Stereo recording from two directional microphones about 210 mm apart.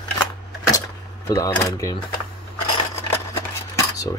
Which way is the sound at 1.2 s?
15° left (ahead or behind).